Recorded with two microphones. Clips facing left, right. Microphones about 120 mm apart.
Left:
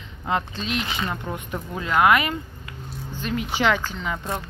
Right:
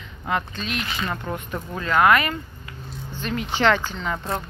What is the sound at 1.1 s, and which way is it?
Speech, 10° left (ahead or behind).